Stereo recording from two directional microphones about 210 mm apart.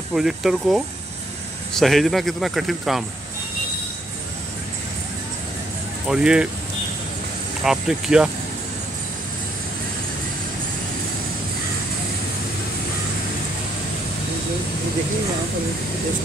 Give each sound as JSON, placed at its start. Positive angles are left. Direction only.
{"t": 0.1, "sound": "speech", "side_deg": 0}
{"t": 6.0, "sound": "speech", "side_deg": -5}
{"t": 7.6, "sound": "speech", "side_deg": -5}